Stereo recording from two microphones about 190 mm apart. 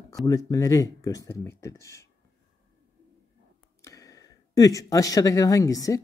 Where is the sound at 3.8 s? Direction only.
15° left (ahead or behind).